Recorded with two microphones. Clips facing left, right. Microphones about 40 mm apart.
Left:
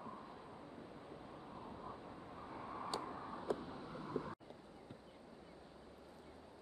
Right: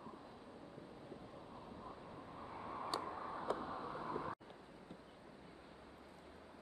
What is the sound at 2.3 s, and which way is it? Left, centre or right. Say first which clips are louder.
Vehicle: right 1 dB; centre.